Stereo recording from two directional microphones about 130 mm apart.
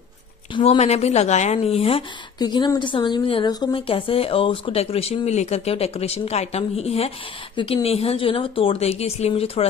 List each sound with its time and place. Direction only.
0.6 s speech: 50° left (ahead or behind)
2.3 s speech: 35° left (ahead or behind)
3.4 s speech: 30° left (ahead or behind)
3.7 s speech: 45° left (ahead or behind)